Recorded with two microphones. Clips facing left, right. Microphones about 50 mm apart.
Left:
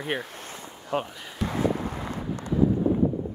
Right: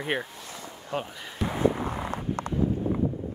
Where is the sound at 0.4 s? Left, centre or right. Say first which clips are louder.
Left 1 dB; left.